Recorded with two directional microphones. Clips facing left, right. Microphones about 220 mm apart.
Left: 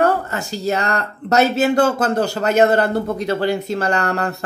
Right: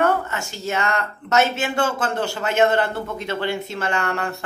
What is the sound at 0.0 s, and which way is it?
Speech, 35° left (ahead or behind).